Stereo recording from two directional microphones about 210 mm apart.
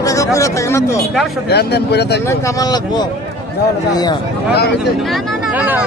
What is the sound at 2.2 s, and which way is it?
A man's voice, 15° left (ahead or behind).